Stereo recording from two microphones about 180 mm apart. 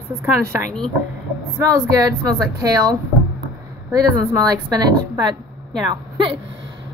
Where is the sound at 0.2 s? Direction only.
10° right (ahead or behind).